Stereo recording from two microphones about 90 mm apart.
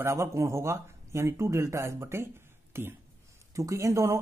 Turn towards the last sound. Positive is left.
turn(degrees=-35)  # may be behind; listen again after turning